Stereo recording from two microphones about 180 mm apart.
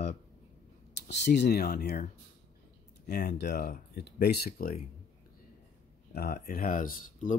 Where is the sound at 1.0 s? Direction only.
70° left (ahead or behind).